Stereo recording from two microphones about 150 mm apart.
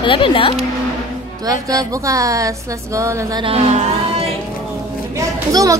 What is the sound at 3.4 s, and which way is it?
Speech, 45° right (ahead or behind).